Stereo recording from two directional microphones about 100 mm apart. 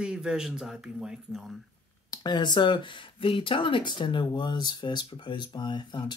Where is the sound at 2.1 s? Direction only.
45° left (ahead or behind).